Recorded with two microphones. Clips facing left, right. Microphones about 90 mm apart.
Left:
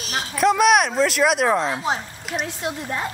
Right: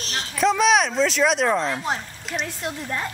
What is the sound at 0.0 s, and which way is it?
A woman's voice, 5° left (ahead or behind).